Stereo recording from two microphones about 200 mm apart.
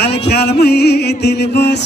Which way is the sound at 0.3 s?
55° left (ahead or behind).